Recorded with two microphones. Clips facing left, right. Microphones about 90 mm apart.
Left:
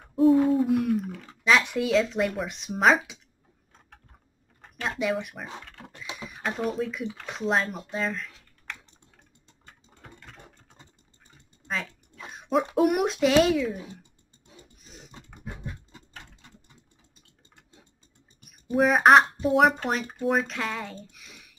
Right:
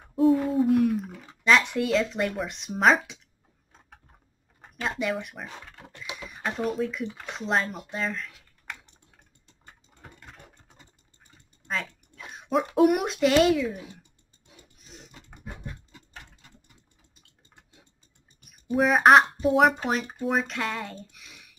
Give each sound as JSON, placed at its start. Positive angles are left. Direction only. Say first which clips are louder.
{"t": 0.0, "sound": "a sound", "louder": "left 2 dB", "side_deg": 0}
{"t": 1.4, "sound": "speech", "louder": "right 1 dB", "side_deg": 0}
{"t": 4.6, "sound": "speech", "louder": "even", "side_deg": -5}
{"t": 5.6, "sound": "pig", "louder": "left 1 dB", "side_deg": -5}
{"t": 6.1, "sound": "speech", "louder": "even", "side_deg": 0}
{"t": 11.6, "sound": "dog", "louder": "even", "side_deg": 0}
{"t": 12.3, "sound": "speech", "louder": "left 1 dB", "side_deg": 0}
{"t": 14.8, "sound": "a sound", "louder": "right 3 dB", "side_deg": 0}
{"t": 15.4, "sound": "a sound", "louder": "left 1 dB", "side_deg": 25}
{"t": 18.5, "sound": "speech", "louder": "left 1 dB", "side_deg": 0}